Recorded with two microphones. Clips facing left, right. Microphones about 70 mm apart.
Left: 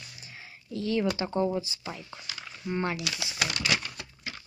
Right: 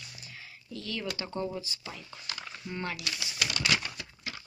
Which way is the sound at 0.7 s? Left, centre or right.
Left.